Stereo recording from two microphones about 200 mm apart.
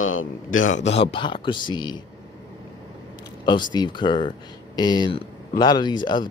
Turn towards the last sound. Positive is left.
turn(degrees=20)  # may be behind; listen again after turning